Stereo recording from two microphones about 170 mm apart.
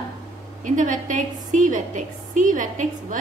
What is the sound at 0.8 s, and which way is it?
A woman's voice, 50° right (ahead or behind).